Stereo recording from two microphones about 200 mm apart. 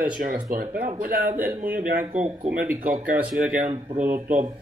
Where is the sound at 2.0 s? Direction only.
10° right (ahead or behind).